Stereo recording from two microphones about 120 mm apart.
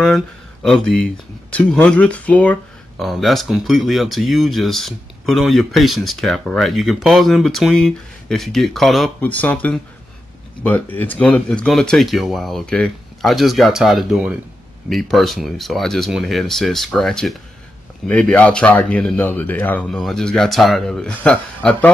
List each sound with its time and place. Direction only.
0.0 s speech: centre (ahead or behind)
1.8 s speech: 10° left (ahead or behind)
3.0 s speech: centre (ahead or behind)
9.2 s speech: 15° left (ahead or behind)